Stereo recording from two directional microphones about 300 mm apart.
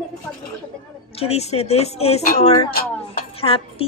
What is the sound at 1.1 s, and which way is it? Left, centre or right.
Speech, left.